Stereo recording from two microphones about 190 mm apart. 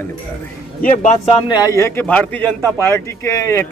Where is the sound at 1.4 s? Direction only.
20° left (ahead or behind).